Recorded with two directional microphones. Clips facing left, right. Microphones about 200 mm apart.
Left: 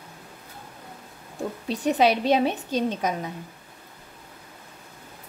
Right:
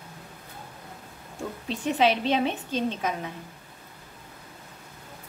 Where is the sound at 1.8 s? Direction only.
40° left (ahead or behind).